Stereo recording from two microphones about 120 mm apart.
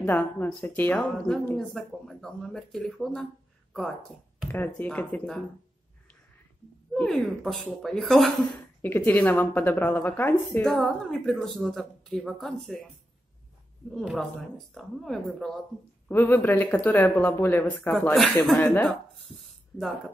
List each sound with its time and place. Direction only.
0.0 s speech: 15° left (ahead or behind)
4.5 s speech: 15° left (ahead or behind)
6.9 s speech: 5° left (ahead or behind)
8.8 s speech: 15° left (ahead or behind)
10.6 s speech: 5° left (ahead or behind)
13.9 s speech: centre (ahead or behind)
16.1 s speech: 15° left (ahead or behind)